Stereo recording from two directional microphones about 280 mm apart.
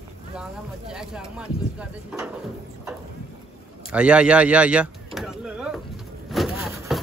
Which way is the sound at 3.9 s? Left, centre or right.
Centre.